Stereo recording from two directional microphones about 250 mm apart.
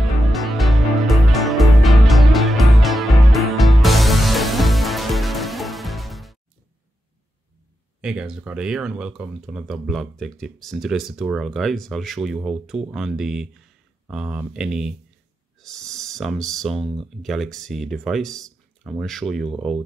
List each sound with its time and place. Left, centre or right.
0.0 s music: centre
8.0 s speech: centre